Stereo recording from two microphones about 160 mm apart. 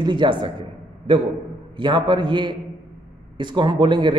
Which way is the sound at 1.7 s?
30° right (ahead or behind).